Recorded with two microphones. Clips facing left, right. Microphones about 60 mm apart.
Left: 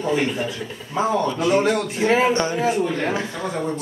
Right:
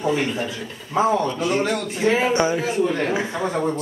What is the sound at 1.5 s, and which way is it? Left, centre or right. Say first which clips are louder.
Speech: left 3 dB; centre.